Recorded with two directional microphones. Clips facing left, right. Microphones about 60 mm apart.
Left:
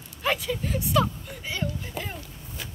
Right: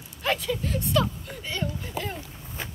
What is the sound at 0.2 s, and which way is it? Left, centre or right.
Speech, centre.